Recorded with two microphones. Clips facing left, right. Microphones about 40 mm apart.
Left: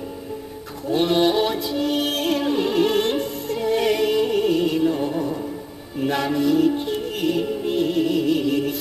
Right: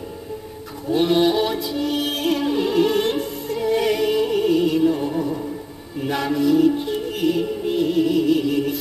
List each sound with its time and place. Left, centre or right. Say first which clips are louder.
0.8 s music: right 1 dB; centre